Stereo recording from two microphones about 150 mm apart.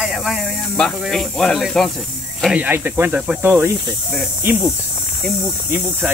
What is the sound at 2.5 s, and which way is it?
Speech, 10° right (ahead or behind).